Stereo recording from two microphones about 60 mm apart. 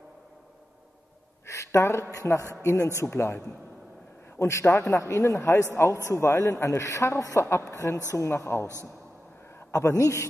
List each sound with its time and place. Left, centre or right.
1.4 s a sound: left
2.1 s a man's voice: left
4.4 s a man's voice: left
9.7 s a man's voice: left